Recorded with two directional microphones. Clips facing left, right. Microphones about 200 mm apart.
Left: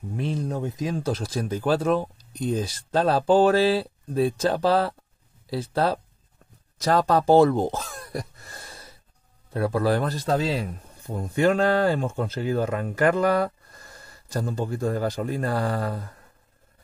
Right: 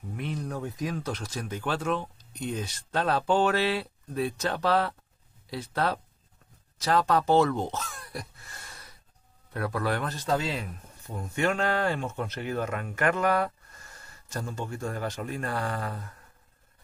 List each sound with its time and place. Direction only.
0.1 s speech: 30° left (ahead or behind)